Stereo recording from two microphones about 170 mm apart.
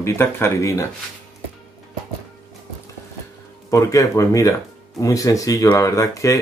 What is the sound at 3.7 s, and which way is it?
Speech, 20° left (ahead or behind).